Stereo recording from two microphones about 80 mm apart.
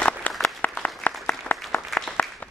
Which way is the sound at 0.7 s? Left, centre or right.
Centre.